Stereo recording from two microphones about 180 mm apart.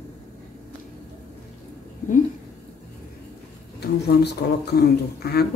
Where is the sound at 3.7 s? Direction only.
65° left (ahead or behind).